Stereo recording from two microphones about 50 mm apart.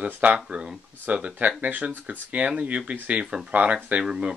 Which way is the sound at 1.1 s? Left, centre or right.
Right.